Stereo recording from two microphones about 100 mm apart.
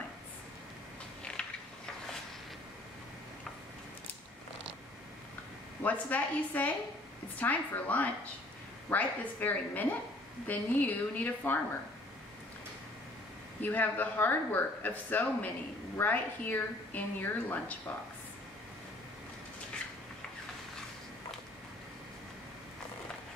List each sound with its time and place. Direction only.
1.4 s mechanisms: 10° left (ahead or behind)
5.9 s speech: 15° left (ahead or behind)
13.6 s a woman's voice: 15° left (ahead or behind)